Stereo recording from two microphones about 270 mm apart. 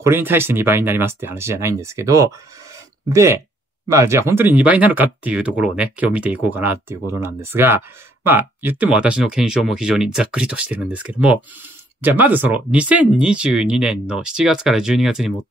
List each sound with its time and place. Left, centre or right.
0.0 s speech: centre